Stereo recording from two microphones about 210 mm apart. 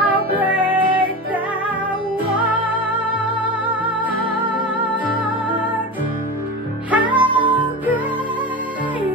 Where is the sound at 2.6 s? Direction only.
5° right (ahead or behind).